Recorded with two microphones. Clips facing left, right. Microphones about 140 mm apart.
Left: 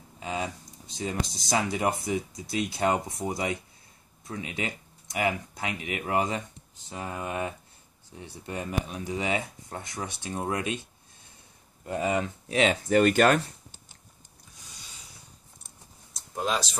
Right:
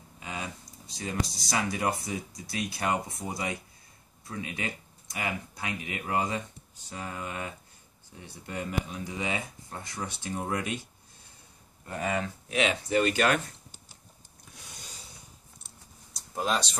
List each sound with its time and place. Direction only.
0.2 s speech: 25° left (ahead or behind)
11.8 s speech: 20° left (ahead or behind); by 13.4 s 45° left (ahead or behind)
16.1 s typing: centre (ahead or behind)